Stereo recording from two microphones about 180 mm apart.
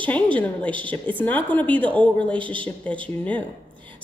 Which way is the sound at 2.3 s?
30° right (ahead or behind).